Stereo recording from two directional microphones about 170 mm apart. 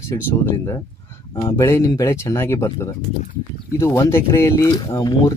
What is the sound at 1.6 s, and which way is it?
Speech, 15° left (ahead or behind).